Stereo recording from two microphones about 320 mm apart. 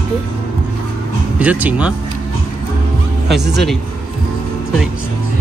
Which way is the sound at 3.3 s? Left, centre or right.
Right.